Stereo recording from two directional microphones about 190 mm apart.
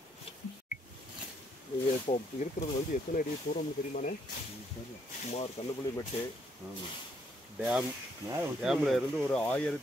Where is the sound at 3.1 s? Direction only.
45° left (ahead or behind).